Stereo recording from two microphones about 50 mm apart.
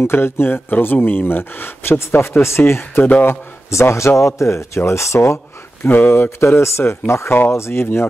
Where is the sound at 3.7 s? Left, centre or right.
Left.